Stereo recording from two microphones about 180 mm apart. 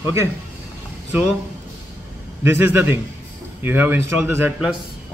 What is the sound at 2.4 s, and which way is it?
Speech, 10° right (ahead or behind).